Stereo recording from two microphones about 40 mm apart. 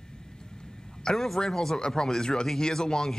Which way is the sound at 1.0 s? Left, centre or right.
Centre.